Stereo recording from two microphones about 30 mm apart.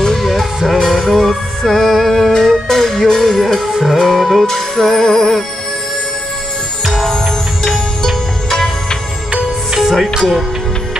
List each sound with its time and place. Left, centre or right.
0.2 s music: centre
3.7 s music: centre
4.5 s music: centre
5.0 s music: centre
7.6 s music: centre
9.8 s music: centre